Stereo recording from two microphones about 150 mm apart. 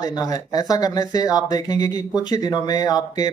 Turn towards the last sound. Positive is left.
turn(degrees=25)  # may be behind; listen again after turning